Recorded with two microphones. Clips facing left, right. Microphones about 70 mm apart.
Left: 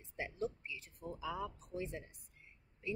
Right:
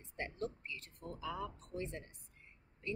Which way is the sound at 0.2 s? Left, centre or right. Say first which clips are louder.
Left 1 dB; centre.